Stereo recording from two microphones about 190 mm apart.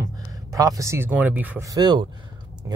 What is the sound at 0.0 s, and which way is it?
Speech, 20° right (ahead or behind).